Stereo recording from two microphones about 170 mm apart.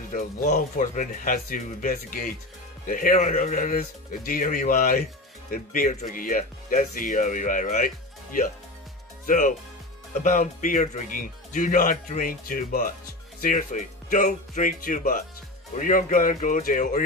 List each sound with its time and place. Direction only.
0.1 s speech: 50° left (ahead or behind)